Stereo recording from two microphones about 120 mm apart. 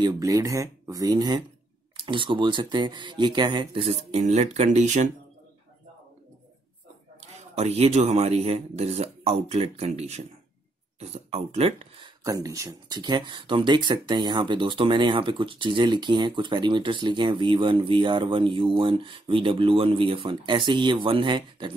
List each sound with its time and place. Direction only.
0.0 s speech: 25° right (ahead or behind); by 5.1 s 85° right
7.2 s speech: 65° right (ahead or behind)
12.2 s speech: 30° right (ahead or behind)